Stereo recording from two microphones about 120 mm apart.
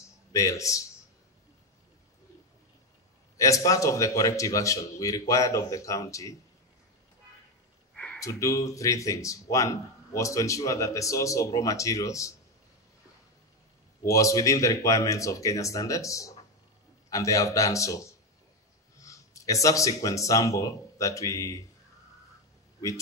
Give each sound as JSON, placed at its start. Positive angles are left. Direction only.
{"t": 0.3, "sound": "speech", "side_deg": 25}
{"t": 3.3, "sound": "speech", "side_deg": 25}
{"t": 7.9, "sound": "a sound", "side_deg": 10}
{"t": 8.2, "sound": "speech", "side_deg": 25}
{"t": 14.0, "sound": "speech", "side_deg": 25}